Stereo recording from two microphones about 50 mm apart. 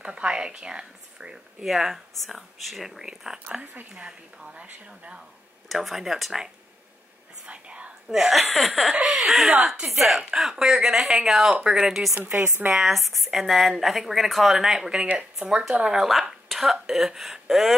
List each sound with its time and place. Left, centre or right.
0.0 s speech: right
1.7 s a woman's voice: centre
4.6 s speech: right
5.7 s speech: centre
7.4 s speech: right
8.1 s a woman's voice: centre
12.2 s speech: right
12.6 s speech: centre
16.0 s speech: centre
16.5 s a sound: centre
16.8 s speech: centre